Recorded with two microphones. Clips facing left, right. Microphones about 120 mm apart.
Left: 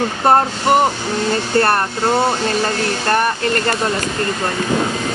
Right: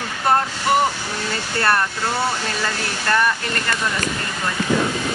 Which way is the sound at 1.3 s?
40° left (ahead or behind).